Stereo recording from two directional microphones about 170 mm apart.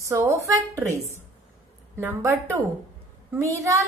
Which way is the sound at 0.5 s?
15° right (ahead or behind).